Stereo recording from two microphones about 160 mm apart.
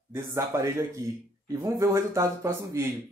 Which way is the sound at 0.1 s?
15° right (ahead or behind).